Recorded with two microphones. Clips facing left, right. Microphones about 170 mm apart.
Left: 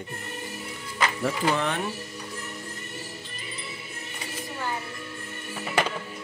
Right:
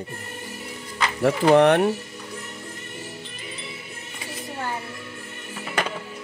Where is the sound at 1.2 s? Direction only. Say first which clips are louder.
Right 12 dB; 65° right (ahead or behind).